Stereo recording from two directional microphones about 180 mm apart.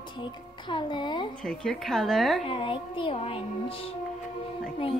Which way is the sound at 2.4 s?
30° left (ahead or behind).